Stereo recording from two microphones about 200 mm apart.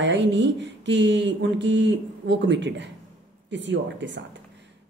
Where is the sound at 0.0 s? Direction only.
65° right (ahead or behind).